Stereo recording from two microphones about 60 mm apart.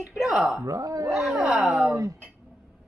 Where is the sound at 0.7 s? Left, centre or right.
Right.